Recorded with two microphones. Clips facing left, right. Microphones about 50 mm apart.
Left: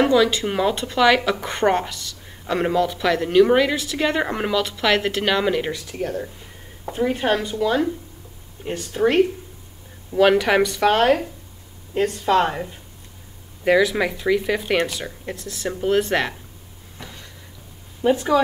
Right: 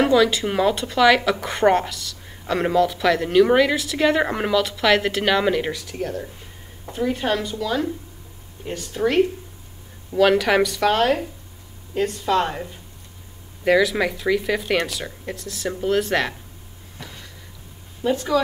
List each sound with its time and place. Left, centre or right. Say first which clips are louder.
0.0 s speech: even; centre
17.0 s a sound: even; centre
18.0 s speech: left 3 dB; left